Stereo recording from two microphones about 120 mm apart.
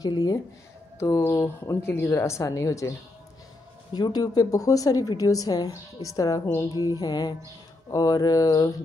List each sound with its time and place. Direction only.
0.0 s a woman's voice: 30° left (ahead or behind)
3.9 s a woman's voice: 35° left (ahead or behind)